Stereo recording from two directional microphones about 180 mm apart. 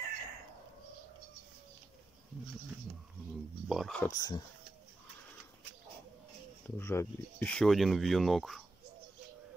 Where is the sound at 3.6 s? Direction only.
Centre (ahead or behind).